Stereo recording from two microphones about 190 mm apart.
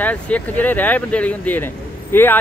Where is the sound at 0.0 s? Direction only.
10° left (ahead or behind).